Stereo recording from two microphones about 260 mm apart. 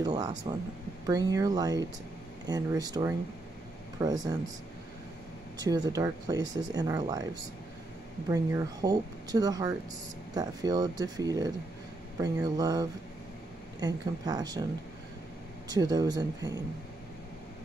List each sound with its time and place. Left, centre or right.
0.0 s speech: centre
5.6 s speech: centre
15.7 s speech: centre